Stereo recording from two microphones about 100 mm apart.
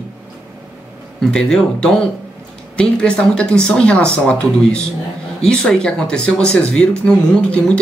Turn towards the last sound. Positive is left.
turn(degrees=10)  # may be behind; listen again after turning